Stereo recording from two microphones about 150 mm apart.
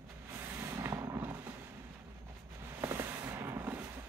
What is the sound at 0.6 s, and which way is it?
Fireworks, 20° right (ahead or behind).